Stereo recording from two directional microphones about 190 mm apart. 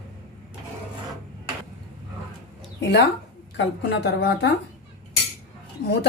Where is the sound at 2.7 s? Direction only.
65° left (ahead or behind).